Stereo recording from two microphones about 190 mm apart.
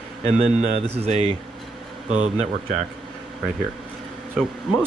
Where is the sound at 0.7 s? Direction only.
35° right (ahead or behind).